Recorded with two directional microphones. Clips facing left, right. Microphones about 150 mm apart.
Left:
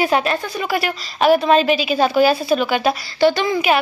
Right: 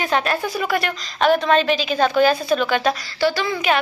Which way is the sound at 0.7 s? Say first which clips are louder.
Left 1 dB; 5° left (ahead or behind).